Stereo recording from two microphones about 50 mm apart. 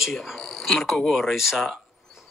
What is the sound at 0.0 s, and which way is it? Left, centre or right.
A man's voice, centre.